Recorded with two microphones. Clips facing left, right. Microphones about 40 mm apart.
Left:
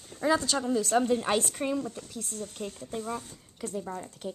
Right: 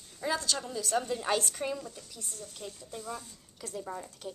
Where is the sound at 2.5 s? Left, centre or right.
Left.